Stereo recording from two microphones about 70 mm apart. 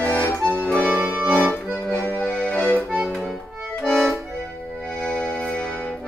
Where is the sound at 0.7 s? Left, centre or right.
Right.